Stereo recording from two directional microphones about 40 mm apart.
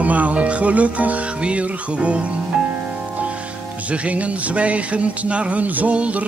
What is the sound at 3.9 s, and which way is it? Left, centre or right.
Music, right.